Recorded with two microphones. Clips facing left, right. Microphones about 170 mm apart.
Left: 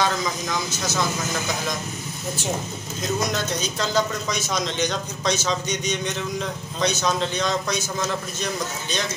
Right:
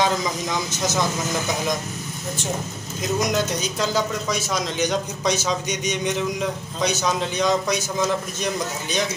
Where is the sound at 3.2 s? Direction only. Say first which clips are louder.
Right 3 dB; 15° right (ahead or behind).